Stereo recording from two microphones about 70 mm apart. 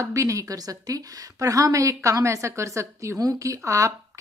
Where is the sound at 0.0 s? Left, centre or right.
Right.